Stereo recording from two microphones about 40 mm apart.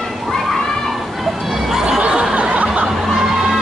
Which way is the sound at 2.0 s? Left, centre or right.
Right.